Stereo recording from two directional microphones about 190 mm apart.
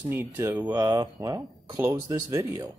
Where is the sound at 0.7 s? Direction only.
20° right (ahead or behind).